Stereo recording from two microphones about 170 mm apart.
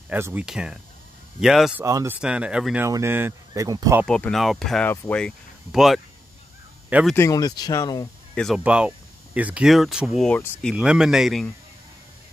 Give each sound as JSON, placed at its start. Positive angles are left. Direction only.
{"t": 0.1, "sound": "speech", "side_deg": -10}
{"t": 1.9, "sound": "speech", "side_deg": -20}
{"t": 2.1, "sound": "speech", "side_deg": -5}
{"t": 4.1, "sound": "speech", "side_deg": 5}
{"t": 5.7, "sound": "speech", "side_deg": 0}
{"t": 7.2, "sound": "speech", "side_deg": 20}
{"t": 8.4, "sound": "speech", "side_deg": 0}